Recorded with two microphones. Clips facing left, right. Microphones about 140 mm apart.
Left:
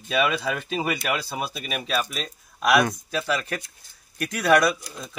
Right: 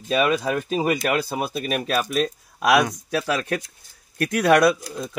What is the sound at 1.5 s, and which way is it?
Speech, 60° right (ahead or behind).